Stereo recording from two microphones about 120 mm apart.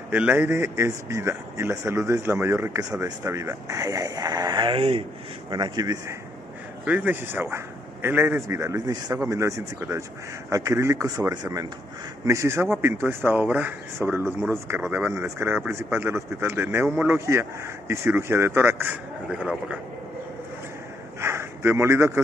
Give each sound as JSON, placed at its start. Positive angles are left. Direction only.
{"t": 0.1, "sound": "speech", "side_deg": -15}
{"t": 5.5, "sound": "speech", "side_deg": -35}
{"t": 6.9, "sound": "a man's voice", "side_deg": -10}
{"t": 19.4, "sound": "a man's voice", "side_deg": -5}
{"t": 21.2, "sound": "speech", "side_deg": -20}